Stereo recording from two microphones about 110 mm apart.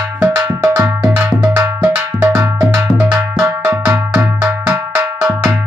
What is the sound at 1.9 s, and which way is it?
Cowbell, 15° right (ahead or behind).